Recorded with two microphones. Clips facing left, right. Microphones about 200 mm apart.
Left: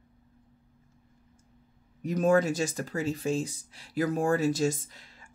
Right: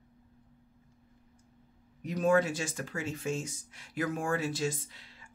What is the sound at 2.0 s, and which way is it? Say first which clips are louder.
Speech: left 3 dB; 45° left (ahead or behind).